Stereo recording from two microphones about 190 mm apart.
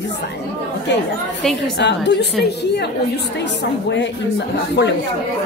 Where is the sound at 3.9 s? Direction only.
65° left (ahead or behind).